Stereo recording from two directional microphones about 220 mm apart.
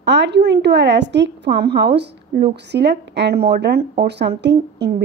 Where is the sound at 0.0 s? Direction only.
50° right (ahead or behind).